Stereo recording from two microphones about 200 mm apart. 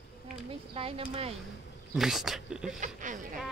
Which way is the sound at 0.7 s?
25° right (ahead or behind).